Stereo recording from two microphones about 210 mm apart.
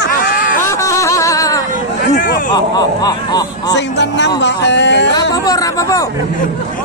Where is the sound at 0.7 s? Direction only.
15° left (ahead or behind).